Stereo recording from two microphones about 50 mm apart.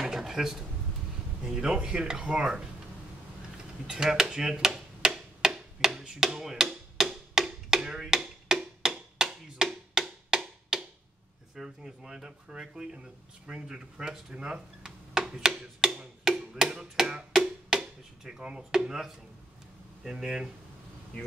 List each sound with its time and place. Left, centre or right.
0.0 s dishes: centre
1.4 s speech: centre
3.5 s a sound: centre
5.9 s wood block: centre
11.5 s speech: centre
18.7 s speech: centre